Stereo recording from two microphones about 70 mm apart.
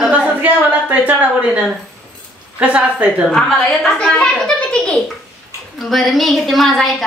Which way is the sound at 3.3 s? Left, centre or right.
Centre.